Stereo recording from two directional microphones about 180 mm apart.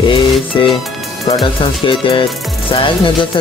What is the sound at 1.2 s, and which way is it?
Speech, 25° left (ahead or behind).